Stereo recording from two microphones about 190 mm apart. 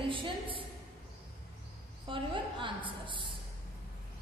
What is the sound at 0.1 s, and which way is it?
Speech, 25° right (ahead or behind).